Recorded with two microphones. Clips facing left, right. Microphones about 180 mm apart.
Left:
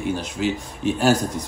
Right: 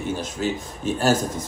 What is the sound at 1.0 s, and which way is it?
Speech, 15° left (ahead or behind).